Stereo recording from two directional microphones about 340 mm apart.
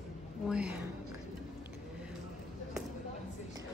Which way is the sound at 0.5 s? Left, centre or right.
Centre.